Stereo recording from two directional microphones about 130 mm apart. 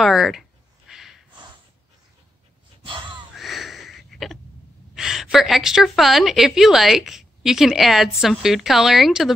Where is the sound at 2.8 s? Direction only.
40° right (ahead or behind).